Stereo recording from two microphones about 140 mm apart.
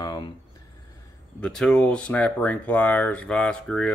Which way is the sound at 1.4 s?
5° left (ahead or behind).